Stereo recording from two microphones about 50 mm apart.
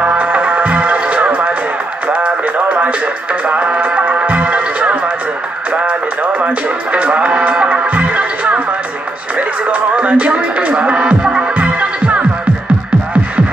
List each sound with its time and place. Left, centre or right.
0.0 s music: right
2.0 s radio: right
3.4 s music: right